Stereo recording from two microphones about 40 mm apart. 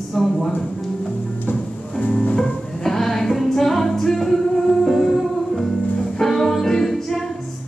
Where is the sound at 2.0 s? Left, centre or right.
Left.